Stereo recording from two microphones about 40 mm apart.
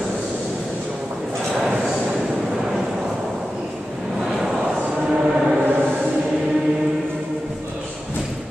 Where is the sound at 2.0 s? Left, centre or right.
Right.